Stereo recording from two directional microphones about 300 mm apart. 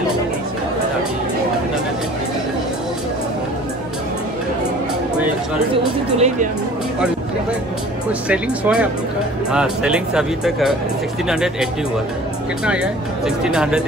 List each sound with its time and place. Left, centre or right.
6.1 s speech: right
8.3 s speech: centre
12.6 s speech: centre